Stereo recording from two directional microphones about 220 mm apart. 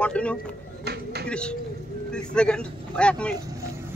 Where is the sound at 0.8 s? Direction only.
45° right (ahead or behind).